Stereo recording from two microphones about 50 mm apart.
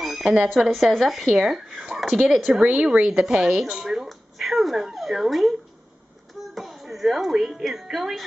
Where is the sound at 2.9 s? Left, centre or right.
Centre.